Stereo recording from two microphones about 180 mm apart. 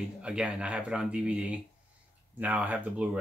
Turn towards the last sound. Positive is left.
turn(degrees=-5)  # may be behind; listen again after turning